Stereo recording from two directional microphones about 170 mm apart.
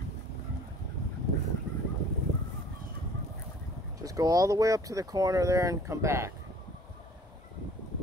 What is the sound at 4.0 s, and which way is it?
Speech, 20° right (ahead or behind).